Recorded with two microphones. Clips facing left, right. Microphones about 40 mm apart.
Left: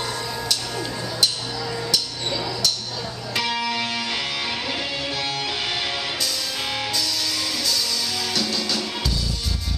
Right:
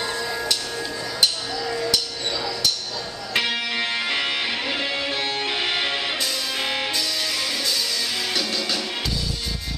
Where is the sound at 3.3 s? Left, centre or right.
Right.